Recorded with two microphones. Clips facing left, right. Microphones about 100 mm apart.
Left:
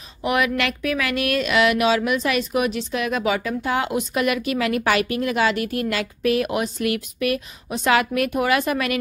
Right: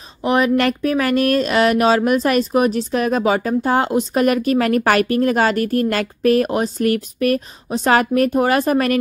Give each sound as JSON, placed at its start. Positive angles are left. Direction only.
{"t": 0.2, "sound": "speech", "side_deg": -35}